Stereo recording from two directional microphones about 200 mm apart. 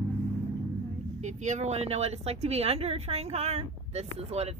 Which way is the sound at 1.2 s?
35° right (ahead or behind).